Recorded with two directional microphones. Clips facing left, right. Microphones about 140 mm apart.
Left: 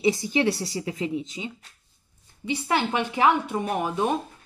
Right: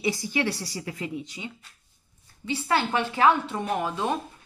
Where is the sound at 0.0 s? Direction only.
20° left (ahead or behind).